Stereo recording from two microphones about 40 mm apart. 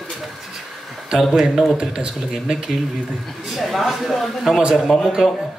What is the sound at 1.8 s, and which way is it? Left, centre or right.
Speech, right.